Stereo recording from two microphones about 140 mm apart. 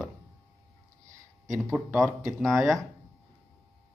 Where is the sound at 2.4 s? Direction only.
Centre (ahead or behind).